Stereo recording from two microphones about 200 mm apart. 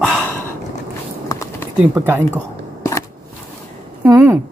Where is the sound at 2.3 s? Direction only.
15° left (ahead or behind).